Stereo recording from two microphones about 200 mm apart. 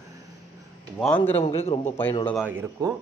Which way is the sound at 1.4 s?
30° left (ahead or behind).